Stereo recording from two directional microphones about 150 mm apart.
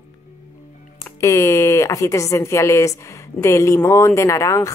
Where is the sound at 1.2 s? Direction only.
20° left (ahead or behind).